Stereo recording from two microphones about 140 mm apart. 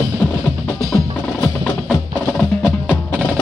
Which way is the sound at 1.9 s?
Centre (ahead or behind).